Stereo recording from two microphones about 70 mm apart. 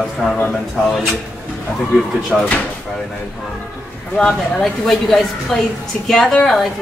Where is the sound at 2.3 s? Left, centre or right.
Centre.